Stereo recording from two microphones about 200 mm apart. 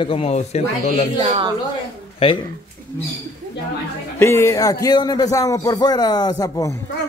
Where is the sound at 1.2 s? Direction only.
30° right (ahead or behind).